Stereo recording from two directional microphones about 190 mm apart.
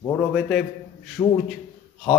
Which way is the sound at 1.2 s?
15° left (ahead or behind).